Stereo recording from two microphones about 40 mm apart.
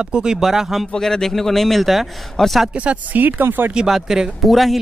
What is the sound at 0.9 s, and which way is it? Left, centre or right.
Speech, centre.